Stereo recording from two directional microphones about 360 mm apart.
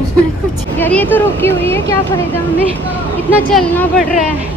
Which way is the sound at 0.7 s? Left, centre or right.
Centre.